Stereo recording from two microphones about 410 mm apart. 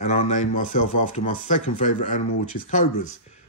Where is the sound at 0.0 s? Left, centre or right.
Centre.